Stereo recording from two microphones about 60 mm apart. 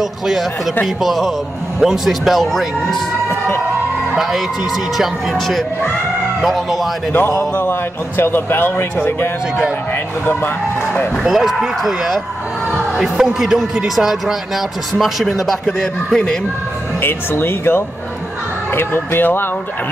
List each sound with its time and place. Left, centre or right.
1.0 s speech: centre
3.3 s speech: left
4.9 s speech: centre
7.1 s speech: left
11.2 s speech: centre
17.0 s speech: left